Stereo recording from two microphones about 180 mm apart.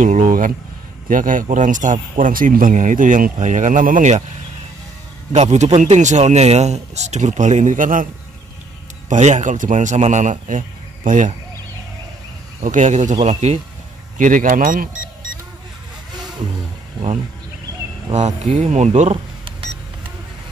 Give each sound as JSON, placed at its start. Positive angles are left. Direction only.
{"t": 0.0, "sound": "speech", "side_deg": -45}
{"t": 5.3, "sound": "speech", "side_deg": -40}
{"t": 9.1, "sound": "speech", "side_deg": -40}
{"t": 12.6, "sound": "speech", "side_deg": -40}
{"t": 18.1, "sound": "speech", "side_deg": -40}